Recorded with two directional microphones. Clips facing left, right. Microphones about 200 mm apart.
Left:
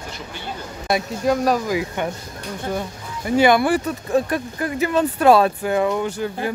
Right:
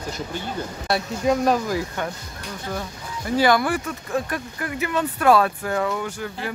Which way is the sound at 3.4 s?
25° left (ahead or behind).